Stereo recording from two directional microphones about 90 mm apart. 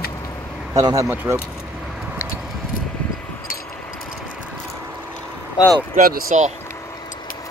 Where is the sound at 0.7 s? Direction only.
40° right (ahead or behind).